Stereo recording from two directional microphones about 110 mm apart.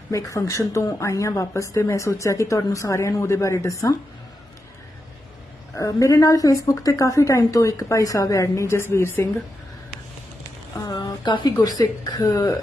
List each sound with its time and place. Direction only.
0.1 s speech: 30° left (ahead or behind)
5.8 s speech: 30° left (ahead or behind)
10.8 s speech: 40° left (ahead or behind)